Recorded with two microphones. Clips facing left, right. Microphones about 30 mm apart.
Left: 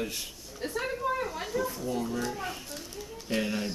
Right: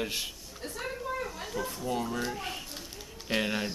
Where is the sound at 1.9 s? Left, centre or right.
Centre.